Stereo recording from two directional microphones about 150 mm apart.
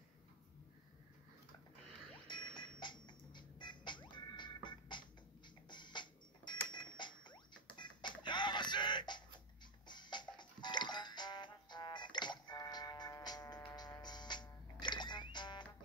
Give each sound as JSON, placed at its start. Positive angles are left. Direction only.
{"t": 2.2, "sound": "music", "side_deg": 30}